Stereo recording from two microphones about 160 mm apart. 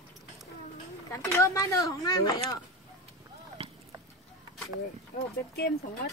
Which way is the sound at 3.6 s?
40° right (ahead or behind).